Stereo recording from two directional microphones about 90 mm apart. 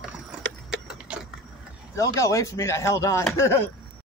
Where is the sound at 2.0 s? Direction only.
35° left (ahead or behind).